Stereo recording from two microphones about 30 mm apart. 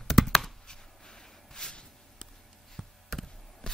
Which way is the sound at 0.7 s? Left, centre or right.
Left.